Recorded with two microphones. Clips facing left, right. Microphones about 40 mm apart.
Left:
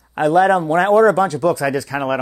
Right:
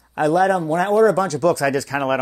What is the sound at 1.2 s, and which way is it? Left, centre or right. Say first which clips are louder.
Speech: left 1 dB; centre.